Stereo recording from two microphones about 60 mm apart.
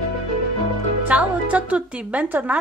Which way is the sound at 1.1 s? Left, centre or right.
Right.